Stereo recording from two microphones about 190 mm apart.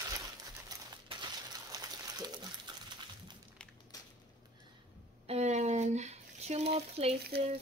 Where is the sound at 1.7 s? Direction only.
20° right (ahead or behind).